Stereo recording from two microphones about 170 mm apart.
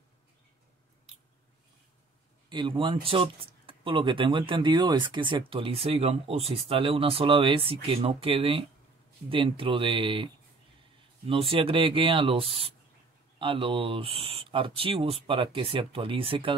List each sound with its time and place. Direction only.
2.5 s speech: 25° right (ahead or behind)